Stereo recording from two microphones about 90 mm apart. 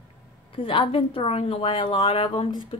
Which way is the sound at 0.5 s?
75° left (ahead or behind).